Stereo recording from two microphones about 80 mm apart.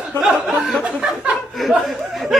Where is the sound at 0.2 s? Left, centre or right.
Left.